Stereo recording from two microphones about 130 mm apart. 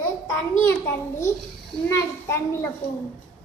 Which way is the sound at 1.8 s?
20° left (ahead or behind).